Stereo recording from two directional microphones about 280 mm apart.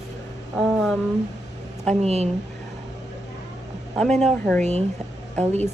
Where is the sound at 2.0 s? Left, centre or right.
Right.